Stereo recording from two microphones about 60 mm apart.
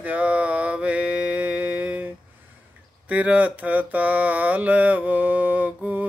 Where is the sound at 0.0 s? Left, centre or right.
Right.